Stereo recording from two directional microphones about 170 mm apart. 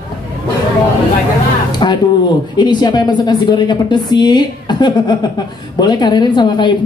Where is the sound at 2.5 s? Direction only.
25° left (ahead or behind).